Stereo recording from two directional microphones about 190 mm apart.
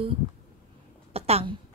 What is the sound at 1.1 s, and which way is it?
Speech, 30° right (ahead or behind).